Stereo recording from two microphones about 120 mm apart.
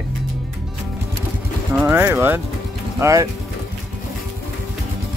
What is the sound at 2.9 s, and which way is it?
Music, 25° right (ahead or behind).